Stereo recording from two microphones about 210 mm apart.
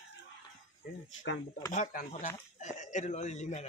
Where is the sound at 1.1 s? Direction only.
65° left (ahead or behind).